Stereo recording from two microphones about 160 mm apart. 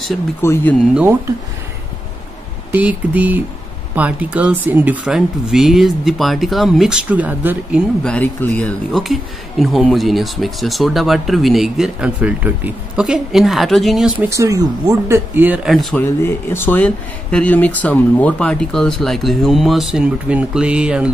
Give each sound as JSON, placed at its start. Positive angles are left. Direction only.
{"t": 0.4, "sound": "speech", "side_deg": 15}
{"t": 2.7, "sound": "speech", "side_deg": -10}
{"t": 8.0, "sound": "speech", "side_deg": 10}
{"t": 14.2, "sound": "speech", "side_deg": -20}
{"t": 16.0, "sound": "speech", "side_deg": 15}